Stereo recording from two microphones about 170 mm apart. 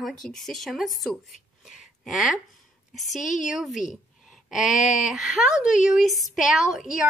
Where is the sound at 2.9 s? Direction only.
Centre (ahead or behind).